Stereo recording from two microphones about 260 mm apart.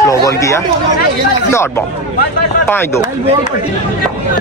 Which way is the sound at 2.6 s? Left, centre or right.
Centre.